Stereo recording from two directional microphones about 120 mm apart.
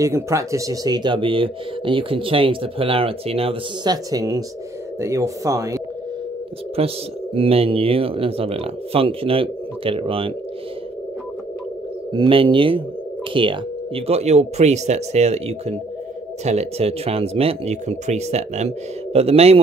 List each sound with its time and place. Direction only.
0.0 s speech: 25° right (ahead or behind); by 3.5 s 55° right (ahead or behind)
3.8 s speech: 35° right (ahead or behind)
6.8 s speech: 55° right (ahead or behind)
12.1 s speech: 45° right (ahead or behind)